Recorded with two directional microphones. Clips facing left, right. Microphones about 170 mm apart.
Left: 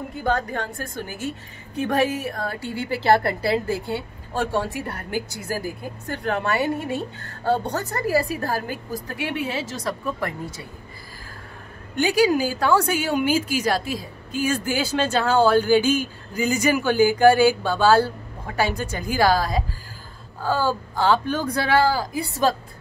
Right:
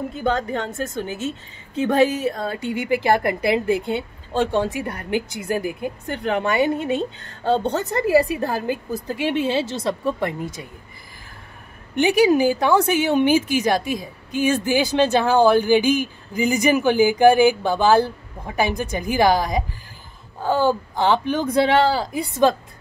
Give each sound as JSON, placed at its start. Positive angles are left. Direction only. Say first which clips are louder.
{"t": 0.1, "sound": "a woman's voice", "louder": "left 1 dB", "side_deg": -20}
{"t": 11.9, "sound": "a woman's voice", "louder": "right 3 dB", "side_deg": -20}